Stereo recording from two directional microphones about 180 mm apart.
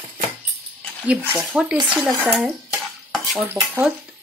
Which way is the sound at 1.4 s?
5° right (ahead or behind).